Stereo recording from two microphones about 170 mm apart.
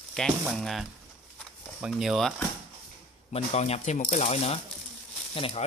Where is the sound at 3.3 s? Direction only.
40° left (ahead or behind).